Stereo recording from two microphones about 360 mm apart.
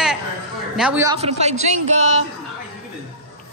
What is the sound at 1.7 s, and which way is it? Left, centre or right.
Speech, right.